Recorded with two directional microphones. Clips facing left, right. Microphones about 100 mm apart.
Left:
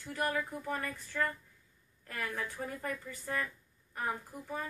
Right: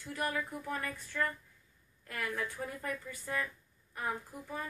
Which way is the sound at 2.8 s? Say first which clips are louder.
Left 1 dB; 35° left (ahead or behind).